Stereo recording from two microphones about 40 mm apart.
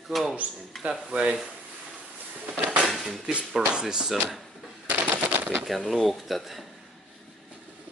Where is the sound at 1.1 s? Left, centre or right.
Right.